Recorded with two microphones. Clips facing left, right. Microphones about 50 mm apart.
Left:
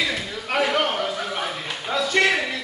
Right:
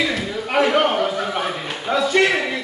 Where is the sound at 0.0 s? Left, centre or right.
Centre.